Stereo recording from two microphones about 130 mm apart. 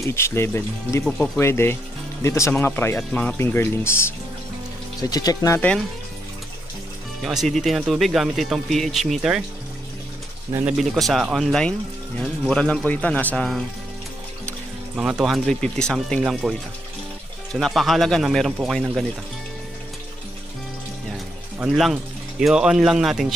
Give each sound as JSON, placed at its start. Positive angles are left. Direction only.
{"t": 0.0, "sound": "speech", "side_deg": 20}
{"t": 1.0, "sound": "speech", "side_deg": 5}
{"t": 1.4, "sound": "a man's voice", "side_deg": 20}
{"t": 5.0, "sound": "speech", "side_deg": 30}
{"t": 5.6, "sound": "a man's voice", "side_deg": 10}
{"t": 7.2, "sound": "speech", "side_deg": 0}
{"t": 10.6, "sound": "a man's voice", "side_deg": 0}
{"t": 15.0, "sound": "speech", "side_deg": -5}
{"t": 21.5, "sound": "speech", "side_deg": -5}